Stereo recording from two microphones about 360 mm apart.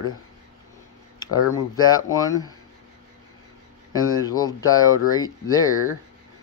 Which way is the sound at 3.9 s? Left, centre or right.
Centre.